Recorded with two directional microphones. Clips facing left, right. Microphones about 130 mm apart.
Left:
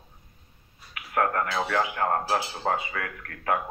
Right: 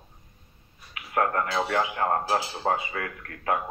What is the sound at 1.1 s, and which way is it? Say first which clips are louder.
Speech: even; 35° right (ahead or behind).